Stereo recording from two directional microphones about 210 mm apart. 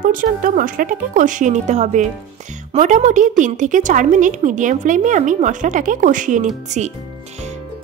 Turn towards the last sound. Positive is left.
turn(degrees=-35)  # may be behind; listen again after turning